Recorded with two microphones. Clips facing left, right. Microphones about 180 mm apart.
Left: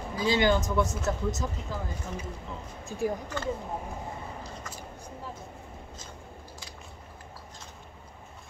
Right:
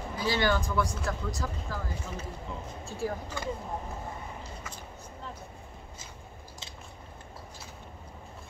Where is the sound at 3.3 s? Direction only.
10° right (ahead or behind).